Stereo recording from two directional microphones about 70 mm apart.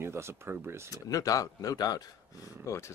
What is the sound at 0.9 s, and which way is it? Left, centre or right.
Speech, left.